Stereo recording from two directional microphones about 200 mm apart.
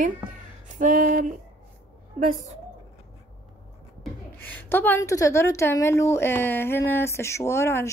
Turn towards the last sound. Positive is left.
turn(degrees=15)  # may be behind; listen again after turning